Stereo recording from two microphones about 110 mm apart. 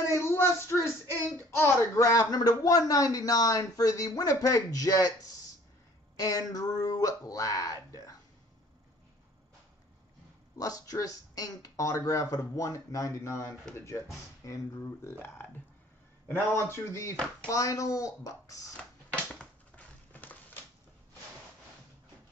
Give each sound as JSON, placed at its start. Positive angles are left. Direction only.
{"t": 0.1, "sound": "a sound", "side_deg": 20}
{"t": 1.5, "sound": "speech", "side_deg": 25}
{"t": 10.6, "sound": "a man's voice", "side_deg": 35}
{"t": 18.8, "sound": "typewriter", "side_deg": 10}